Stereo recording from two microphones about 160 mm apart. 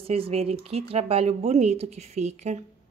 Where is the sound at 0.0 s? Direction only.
35° right (ahead or behind).